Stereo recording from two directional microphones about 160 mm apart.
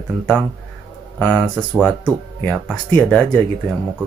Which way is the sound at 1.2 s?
5° left (ahead or behind).